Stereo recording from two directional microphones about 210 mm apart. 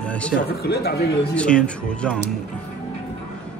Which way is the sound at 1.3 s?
5° left (ahead or behind).